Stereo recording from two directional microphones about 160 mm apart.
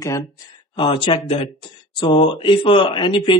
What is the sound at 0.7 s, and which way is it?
Speech, 30° left (ahead or behind).